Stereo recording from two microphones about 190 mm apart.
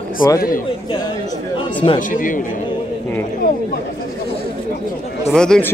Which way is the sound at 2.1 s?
45° left (ahead or behind).